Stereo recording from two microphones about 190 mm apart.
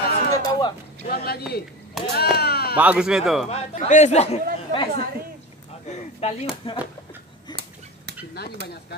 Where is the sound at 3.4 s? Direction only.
35° left (ahead or behind).